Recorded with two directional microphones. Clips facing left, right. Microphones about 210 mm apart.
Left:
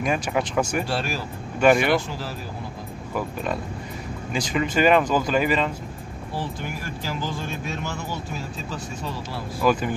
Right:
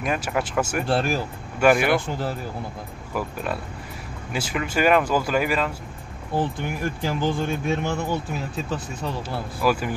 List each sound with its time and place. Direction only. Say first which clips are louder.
0.0 s speech: left 1 dB; centre (ahead or behind)
0.8 s speech: right 5 dB; 55° right (ahead or behind)
1.6 s speech: even; 5° right (ahead or behind)
4.3 s speech: left 2 dB; 5° right (ahead or behind)
6.3 s speech: right 6 dB; 55° right (ahead or behind)
9.6 s speech: left 1 dB; 5° right (ahead or behind)